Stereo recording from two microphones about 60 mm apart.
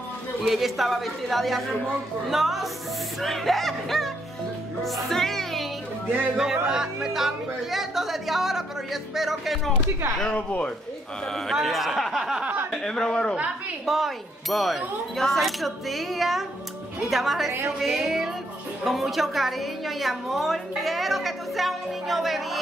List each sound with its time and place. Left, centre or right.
0.5 s a woman's voice: centre
6.3 s a woman's voice: centre
10.2 s speech: left
11.5 s a woman's voice: centre
13.8 s a woman's voice: centre